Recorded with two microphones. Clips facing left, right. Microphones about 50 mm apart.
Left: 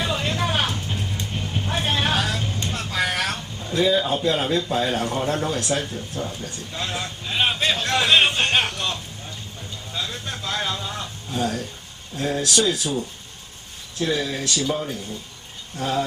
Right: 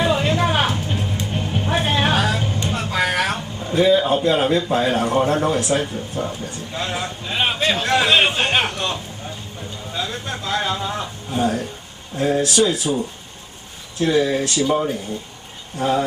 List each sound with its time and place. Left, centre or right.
0.0 s music: centre
5.6 s speech: centre
6.7 s a man's voice: centre
7.8 s a sound: centre; by 11.6 s right
12.2 s speech: right
14.0 s speech: right
15.8 s speech: right